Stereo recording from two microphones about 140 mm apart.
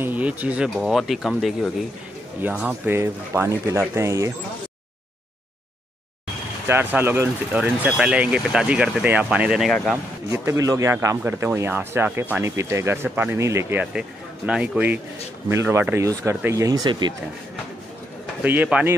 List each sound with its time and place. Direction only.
0.0 s speech: 10° right (ahead or behind)
2.4 s speech: 15° right (ahead or behind)
6.7 s speech: 15° right (ahead or behind)
10.3 s speech: 20° right (ahead or behind)
18.4 s speech: 10° right (ahead or behind)